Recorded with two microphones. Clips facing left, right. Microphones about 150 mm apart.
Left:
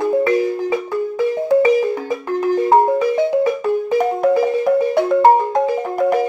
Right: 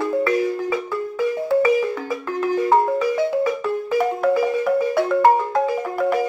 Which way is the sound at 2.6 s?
25° left (ahead or behind).